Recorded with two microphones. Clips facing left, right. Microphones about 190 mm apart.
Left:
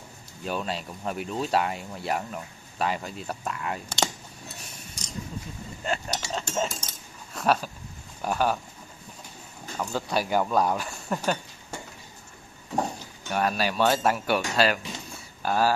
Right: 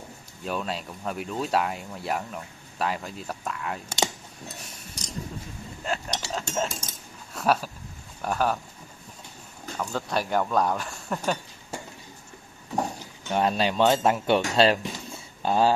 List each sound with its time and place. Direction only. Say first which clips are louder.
0.4 s speech: even; centre (ahead or behind)
3.9 s cutlery: right 1 dB; 15° right (ahead or behind)
5.9 s speech: left 1 dB; 5° left (ahead or behind)
9.8 s speech: left 1 dB; centre (ahead or behind)
13.0 s speech: right 2 dB; 20° right (ahead or behind)
15.0 s a sound: right 2 dB; 20° right (ahead or behind)